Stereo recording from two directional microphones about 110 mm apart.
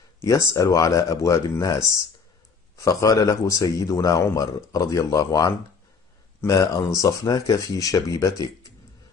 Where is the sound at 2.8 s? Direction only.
30° left (ahead or behind).